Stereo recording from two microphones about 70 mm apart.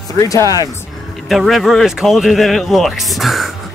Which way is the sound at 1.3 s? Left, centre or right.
Centre.